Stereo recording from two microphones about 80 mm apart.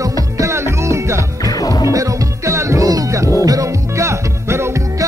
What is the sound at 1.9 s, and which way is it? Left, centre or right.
Music, right.